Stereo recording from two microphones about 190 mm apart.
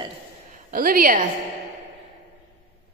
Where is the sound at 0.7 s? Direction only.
50° right (ahead or behind).